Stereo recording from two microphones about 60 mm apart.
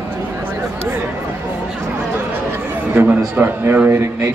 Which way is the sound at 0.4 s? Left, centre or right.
Right.